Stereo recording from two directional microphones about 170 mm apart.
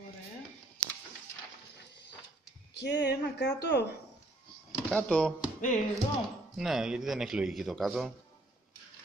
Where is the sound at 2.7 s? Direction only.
85° left.